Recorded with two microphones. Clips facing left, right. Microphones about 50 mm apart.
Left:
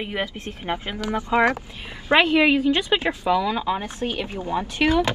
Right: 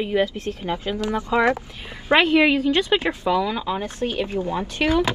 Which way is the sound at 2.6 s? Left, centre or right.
Centre.